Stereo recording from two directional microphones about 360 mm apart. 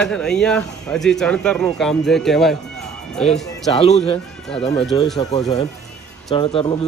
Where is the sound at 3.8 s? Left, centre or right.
Centre.